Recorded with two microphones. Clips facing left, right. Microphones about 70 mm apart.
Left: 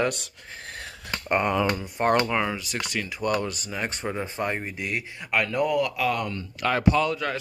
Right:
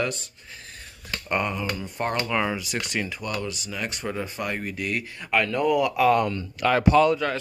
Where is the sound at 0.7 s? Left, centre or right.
Left.